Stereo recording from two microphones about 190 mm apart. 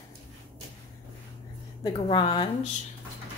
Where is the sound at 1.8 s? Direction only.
25° left (ahead or behind).